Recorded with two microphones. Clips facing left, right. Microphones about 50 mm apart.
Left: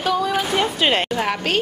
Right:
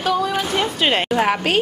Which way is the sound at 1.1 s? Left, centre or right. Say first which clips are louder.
Right 4 dB; centre.